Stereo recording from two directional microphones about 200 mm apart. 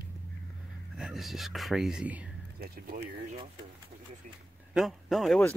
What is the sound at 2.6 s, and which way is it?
Speech, 50° right (ahead or behind).